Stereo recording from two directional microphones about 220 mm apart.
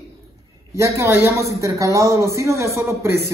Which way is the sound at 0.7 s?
15° right (ahead or behind).